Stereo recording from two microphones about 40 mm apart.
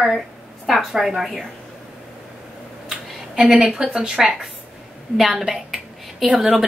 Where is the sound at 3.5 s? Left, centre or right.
Centre.